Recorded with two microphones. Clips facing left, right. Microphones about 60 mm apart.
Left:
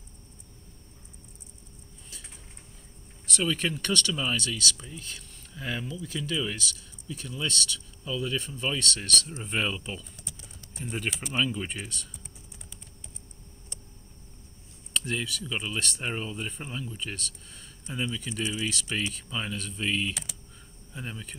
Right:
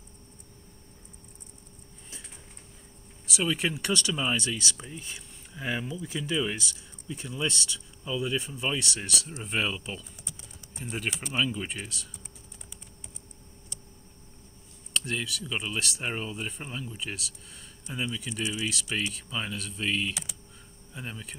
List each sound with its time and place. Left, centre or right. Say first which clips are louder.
3.3 s speech: even; centre
9.4 s speech: even; centre
15.0 s speech: left 1 dB; centre
18.7 s speech: even; centre